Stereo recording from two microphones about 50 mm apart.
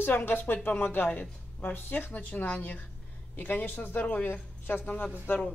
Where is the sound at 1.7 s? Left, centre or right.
Left.